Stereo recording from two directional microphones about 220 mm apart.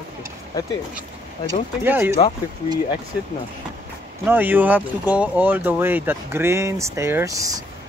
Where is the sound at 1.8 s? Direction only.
10° right (ahead or behind).